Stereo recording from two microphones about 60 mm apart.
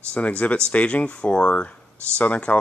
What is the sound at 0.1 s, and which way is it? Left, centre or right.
Speech, centre.